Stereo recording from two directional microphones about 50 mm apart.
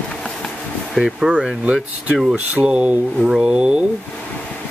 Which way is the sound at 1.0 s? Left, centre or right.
Centre.